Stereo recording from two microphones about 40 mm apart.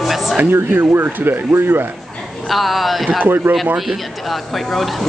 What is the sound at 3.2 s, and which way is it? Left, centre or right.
Speech, right.